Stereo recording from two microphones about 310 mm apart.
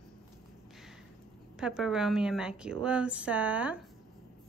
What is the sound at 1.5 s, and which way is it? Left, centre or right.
A woman's voice, centre.